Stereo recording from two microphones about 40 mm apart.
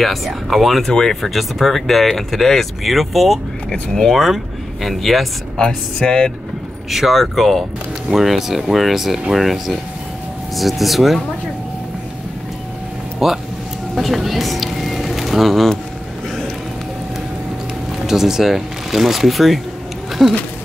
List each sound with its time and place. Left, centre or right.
0.0 s speech: centre
0.9 s speech: centre
1.3 s speech: centre
5.6 s speech: centre
6.9 s speech: centre
13.2 s speech: centre
13.9 s a sound: centre
18.0 s speech: centre
20.1 s a sound: centre